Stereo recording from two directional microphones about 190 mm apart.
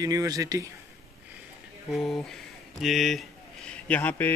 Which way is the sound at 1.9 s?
Centre (ahead or behind).